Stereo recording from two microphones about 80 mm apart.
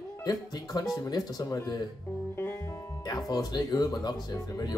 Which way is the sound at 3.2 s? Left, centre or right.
Left.